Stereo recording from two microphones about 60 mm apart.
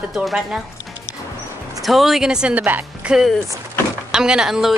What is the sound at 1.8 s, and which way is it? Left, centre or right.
Speech, centre.